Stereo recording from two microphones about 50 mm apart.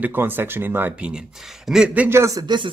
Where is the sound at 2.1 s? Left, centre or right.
Right.